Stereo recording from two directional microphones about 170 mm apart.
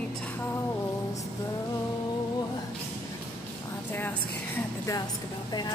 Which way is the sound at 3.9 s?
10° left (ahead or behind).